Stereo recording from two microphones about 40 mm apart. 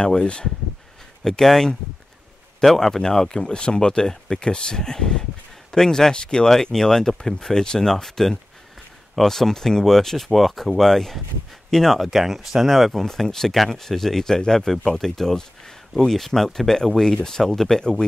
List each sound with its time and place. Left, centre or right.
0.0 s speech: left
1.2 s speech: centre
12.1 s speech: centre